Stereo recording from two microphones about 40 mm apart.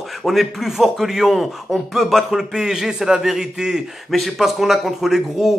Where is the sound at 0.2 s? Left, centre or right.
Centre.